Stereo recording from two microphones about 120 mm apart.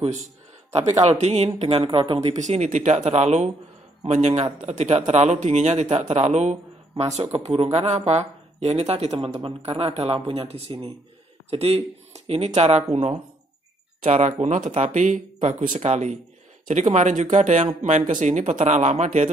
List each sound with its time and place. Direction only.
1.0 s speech: 65° right (ahead or behind)
1.9 s speech: 45° right (ahead or behind)
2.1 s a man's voice: 70° right (ahead or behind)
6.0 s speech: 70° right (ahead or behind)
14.0 s speech: 80° right
16.6 s speech: 90° right